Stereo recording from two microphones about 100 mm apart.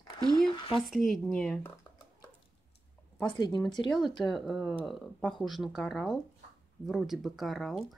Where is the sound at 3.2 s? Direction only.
45° left (ahead or behind).